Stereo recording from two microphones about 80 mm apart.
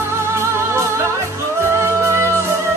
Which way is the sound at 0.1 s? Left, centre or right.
Right.